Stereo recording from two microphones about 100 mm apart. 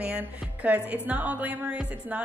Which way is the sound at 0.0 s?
15° right (ahead or behind).